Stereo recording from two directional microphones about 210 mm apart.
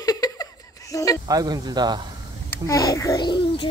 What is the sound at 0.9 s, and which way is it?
Speech, 15° left (ahead or behind).